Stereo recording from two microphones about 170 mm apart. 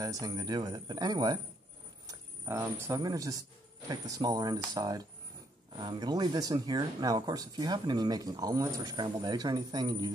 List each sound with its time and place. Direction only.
0.0 s speech: 20° right (ahead or behind)